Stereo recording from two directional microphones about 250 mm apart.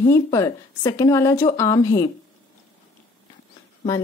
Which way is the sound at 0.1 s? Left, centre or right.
Centre.